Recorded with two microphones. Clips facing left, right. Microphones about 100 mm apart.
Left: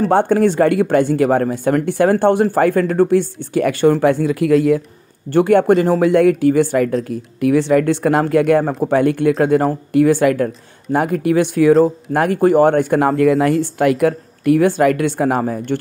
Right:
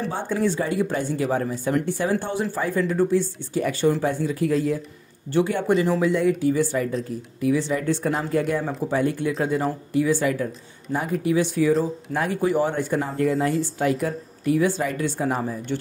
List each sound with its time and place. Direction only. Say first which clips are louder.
0.1 s speech: left 11 dB; 65° left (ahead or behind)
5.3 s speech: left 9 dB; 60° left (ahead or behind)